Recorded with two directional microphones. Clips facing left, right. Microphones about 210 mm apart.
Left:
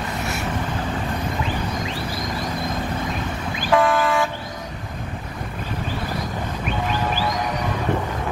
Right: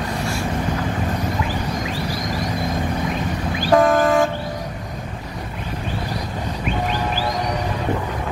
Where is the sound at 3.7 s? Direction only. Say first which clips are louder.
Right 4 dB; 45° right (ahead or behind).